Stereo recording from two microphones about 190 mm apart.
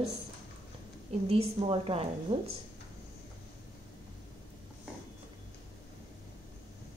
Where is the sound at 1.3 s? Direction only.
30° right (ahead or behind).